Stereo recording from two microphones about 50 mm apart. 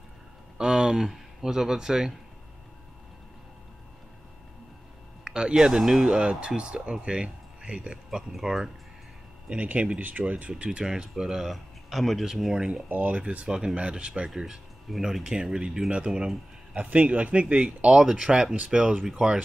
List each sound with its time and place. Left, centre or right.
0.6 s speech: centre
5.2 s speech: centre
8.3 s speech: centre
9.5 s speech: right; by 12.3 s centre
12.3 s speech: centre
12.8 s speech: right
13.5 s speech: centre
16.7 s speech: right
17.8 s speech: centre